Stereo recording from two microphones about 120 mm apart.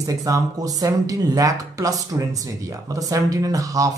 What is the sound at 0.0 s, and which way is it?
Speech, 30° right (ahead or behind).